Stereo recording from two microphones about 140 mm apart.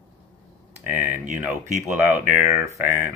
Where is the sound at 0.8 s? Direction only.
10° right (ahead or behind).